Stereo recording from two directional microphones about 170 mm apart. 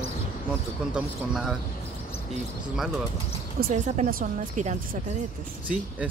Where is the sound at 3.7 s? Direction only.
45° right (ahead or behind).